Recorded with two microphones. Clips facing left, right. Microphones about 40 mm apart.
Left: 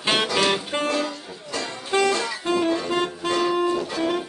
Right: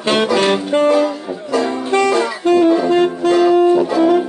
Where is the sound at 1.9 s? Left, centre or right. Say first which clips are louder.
Right 6 dB; centre.